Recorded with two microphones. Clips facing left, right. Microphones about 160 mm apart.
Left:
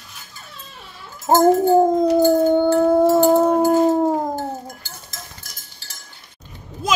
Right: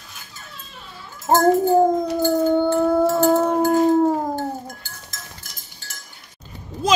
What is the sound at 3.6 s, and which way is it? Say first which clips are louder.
Howl: left 1 dB; 5° left (ahead or behind).